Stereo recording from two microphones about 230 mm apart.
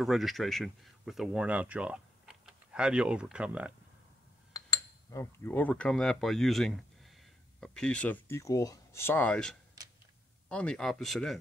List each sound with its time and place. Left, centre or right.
0.0 s speech: centre
5.1 s speech: centre